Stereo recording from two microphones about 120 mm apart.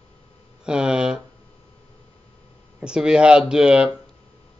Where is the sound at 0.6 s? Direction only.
5° right (ahead or behind).